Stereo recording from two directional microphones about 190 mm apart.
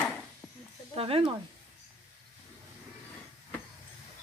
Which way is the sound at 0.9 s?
30° right (ahead or behind).